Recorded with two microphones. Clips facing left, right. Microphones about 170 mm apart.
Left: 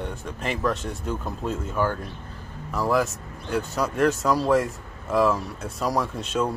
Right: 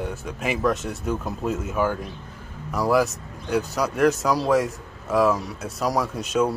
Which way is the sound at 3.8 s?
Centre (ahead or behind).